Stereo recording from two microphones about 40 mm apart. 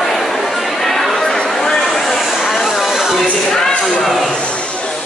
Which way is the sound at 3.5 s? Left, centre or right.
Centre.